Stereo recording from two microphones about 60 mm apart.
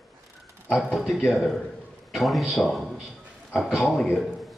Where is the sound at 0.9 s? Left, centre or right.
Centre.